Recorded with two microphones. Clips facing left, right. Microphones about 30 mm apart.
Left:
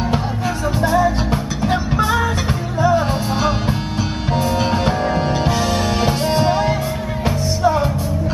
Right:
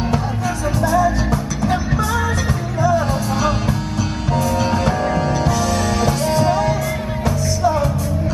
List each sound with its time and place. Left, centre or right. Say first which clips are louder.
0.7 s music: even; left